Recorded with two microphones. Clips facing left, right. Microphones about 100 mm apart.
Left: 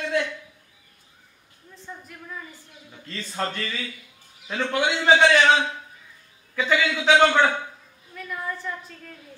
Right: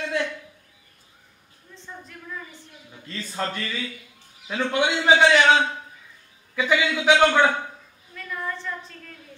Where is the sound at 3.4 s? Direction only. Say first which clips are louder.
Even; 10° right (ahead or behind).